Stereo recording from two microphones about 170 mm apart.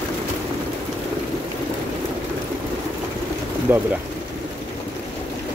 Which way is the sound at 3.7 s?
10° right (ahead or behind).